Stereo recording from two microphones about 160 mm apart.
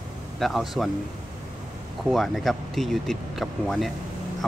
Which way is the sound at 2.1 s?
Centre (ahead or behind).